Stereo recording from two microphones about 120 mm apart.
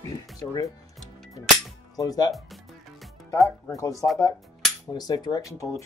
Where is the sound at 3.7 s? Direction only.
25° left (ahead or behind).